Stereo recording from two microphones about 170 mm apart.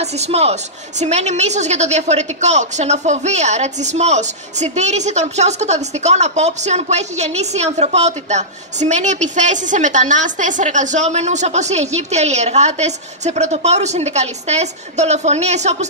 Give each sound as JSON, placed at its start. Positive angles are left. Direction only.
{"t": 0.0, "sound": "a woman's voice", "side_deg": -40}